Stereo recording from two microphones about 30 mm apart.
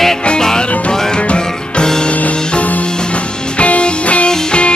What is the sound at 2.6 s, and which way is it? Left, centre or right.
Music, left.